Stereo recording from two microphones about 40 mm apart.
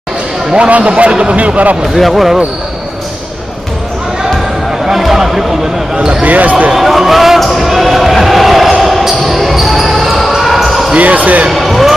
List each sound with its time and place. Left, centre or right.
0.7 s a man's voice: right
2.0 s speech: centre
4.8 s a sound: centre
6.2 s basketball bounce: right
6.7 s basketball bounce: centre
11.0 s a man's voice: right
11.5 s basketball bounce: centre